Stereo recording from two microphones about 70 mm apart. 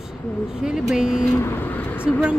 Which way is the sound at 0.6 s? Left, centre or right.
Centre.